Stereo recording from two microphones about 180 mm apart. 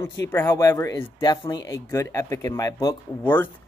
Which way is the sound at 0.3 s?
15° left (ahead or behind).